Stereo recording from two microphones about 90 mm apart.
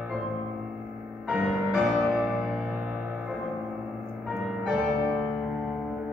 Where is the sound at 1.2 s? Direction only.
5° right (ahead or behind).